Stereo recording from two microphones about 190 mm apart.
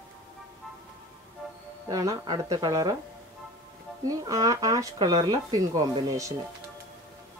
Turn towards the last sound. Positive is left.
turn(degrees=-15)  # may be behind; listen again after turning